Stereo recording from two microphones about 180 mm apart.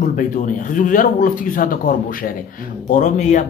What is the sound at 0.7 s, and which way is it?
Speech, 45° left (ahead or behind).